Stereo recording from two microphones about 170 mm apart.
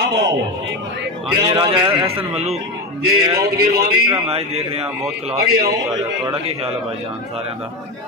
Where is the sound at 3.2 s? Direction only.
25° right (ahead or behind).